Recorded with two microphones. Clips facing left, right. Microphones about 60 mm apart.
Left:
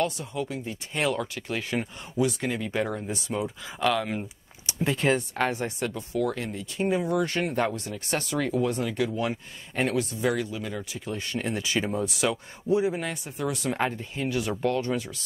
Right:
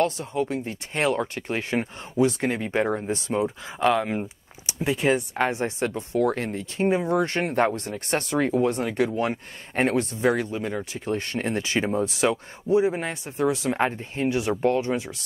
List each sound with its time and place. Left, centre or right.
0.0 s speech: right; by 5.5 s centre
5.5 s speech: right
6.8 s speech: right